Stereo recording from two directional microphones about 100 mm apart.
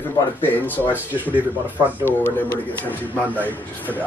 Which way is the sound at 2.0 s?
20° left (ahead or behind).